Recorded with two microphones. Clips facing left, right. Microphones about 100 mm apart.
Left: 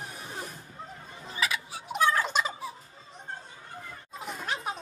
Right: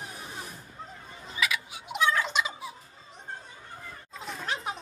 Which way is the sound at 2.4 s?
40° left (ahead or behind).